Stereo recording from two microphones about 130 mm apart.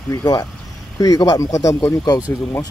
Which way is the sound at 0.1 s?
30° left (ahead or behind).